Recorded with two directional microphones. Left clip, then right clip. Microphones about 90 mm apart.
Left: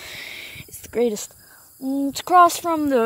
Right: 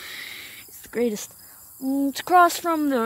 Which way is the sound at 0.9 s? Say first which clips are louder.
Left 4 dB; 10° left (ahead or behind).